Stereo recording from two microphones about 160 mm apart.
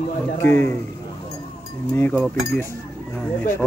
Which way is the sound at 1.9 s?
15° left (ahead or behind).